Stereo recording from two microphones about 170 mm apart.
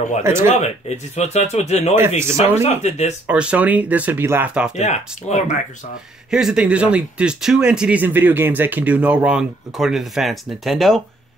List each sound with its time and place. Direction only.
0.2 s speech: 15° right (ahead or behind)
0.6 s speech: 40° left (ahead or behind)
2.0 s speech: 15° right (ahead or behind)
2.3 s speech: 40° left (ahead or behind)
3.3 s speech: 5° right (ahead or behind)
4.7 s speech: 40° left (ahead or behind)
6.3 s speech: 5° right (ahead or behind)